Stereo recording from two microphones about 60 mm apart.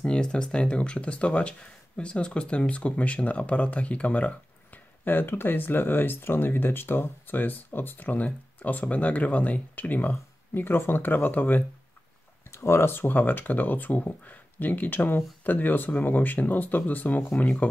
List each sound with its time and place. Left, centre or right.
0.0 s speech: centre; by 11.6 s left
12.4 s speech: left